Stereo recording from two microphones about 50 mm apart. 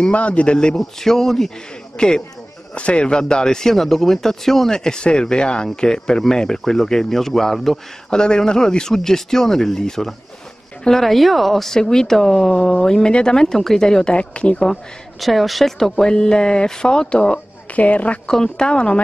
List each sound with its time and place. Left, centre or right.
0.0 s a man's voice: left
0.7 s a man's voice: centre
8.1 s a man's voice: centre
14.1 s a man's voice: left
15.1 s a man's voice: centre; by 18.2 s left
18.2 s a man's voice: centre